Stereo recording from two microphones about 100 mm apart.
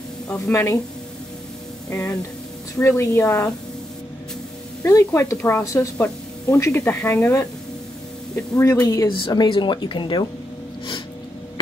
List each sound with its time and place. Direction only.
0.5 s speech: 30° left (ahead or behind)
1.9 s speech: 25° left (ahead or behind)
4.8 s speech: 30° left (ahead or behind)
5.9 s speech: 15° left (ahead or behind)
8.8 s speech: 40° left (ahead or behind)
9.1 s a woman's voice: 50° left (ahead or behind)